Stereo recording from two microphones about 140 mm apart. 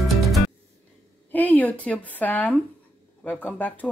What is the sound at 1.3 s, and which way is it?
Speech, 10° left (ahead or behind).